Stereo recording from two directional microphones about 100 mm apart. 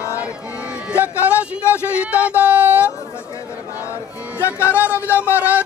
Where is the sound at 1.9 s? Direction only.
15° right (ahead or behind).